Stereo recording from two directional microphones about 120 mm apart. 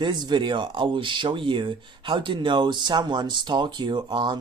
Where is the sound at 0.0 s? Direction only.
35° right (ahead or behind).